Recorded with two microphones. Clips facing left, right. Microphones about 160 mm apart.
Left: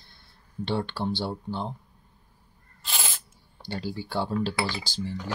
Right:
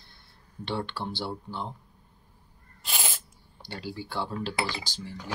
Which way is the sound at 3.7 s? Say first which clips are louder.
Left 4 dB; 35° left (ahead or behind).